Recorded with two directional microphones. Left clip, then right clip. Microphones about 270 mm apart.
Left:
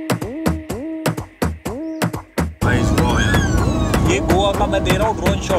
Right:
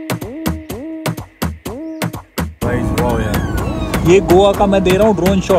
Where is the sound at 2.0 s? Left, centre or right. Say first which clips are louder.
Even; centre.